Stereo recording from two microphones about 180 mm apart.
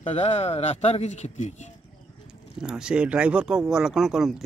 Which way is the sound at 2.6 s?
5° right (ahead or behind).